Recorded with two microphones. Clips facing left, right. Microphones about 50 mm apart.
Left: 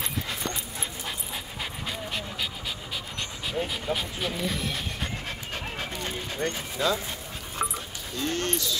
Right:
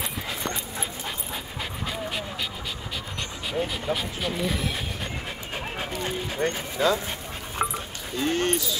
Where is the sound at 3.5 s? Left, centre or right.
Centre.